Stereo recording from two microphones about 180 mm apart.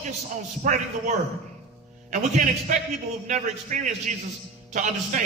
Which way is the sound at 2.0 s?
40° right (ahead or behind).